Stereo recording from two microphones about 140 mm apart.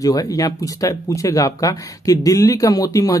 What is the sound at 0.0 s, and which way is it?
Speech, 25° left (ahead or behind).